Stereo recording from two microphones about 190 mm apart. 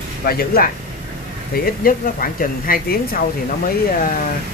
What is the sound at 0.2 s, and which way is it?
Speech, 50° left (ahead or behind).